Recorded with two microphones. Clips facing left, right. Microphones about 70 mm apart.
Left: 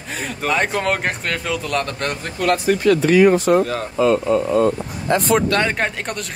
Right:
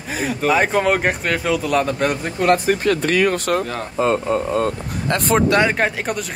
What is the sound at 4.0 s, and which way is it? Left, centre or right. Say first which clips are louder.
Speech: left 2 dB; right.